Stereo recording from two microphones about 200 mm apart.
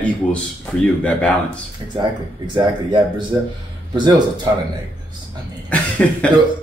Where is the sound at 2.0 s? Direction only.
25° right (ahead or behind).